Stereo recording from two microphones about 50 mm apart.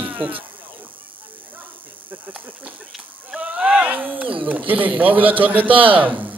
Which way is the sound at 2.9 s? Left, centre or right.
Centre.